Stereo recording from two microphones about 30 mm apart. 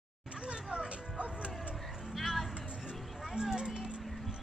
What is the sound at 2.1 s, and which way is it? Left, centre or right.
Music, centre.